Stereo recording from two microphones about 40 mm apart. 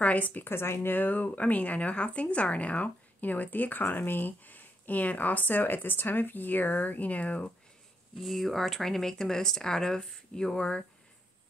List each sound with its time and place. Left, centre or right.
0.0 s a woman's voice: left
0.5 s speech: left
0.9 s a woman's voice: left
8.2 s speech: centre; by 10.9 s left